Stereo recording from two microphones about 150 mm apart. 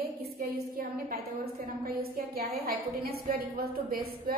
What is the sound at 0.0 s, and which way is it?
A woman's voice, 85° right.